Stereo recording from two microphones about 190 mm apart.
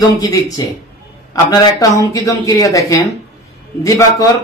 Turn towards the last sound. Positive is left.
turn(degrees=15)  # may be behind; listen again after turning